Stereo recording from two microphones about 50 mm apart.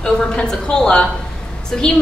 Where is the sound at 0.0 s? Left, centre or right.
Centre.